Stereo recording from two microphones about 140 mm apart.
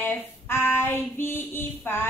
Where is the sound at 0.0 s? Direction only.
15° left (ahead or behind).